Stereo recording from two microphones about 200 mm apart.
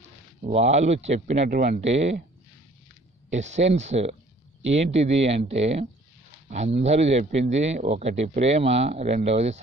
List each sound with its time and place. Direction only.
0.0 s speech: 35° right (ahead or behind)
3.3 s speech: 35° right (ahead or behind)